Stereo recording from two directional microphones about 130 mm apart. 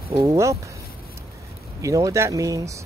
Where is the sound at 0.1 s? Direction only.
30° right (ahead or behind).